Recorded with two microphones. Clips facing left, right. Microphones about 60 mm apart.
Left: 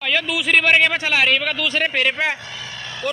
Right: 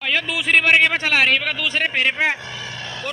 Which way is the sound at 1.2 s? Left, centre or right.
Right.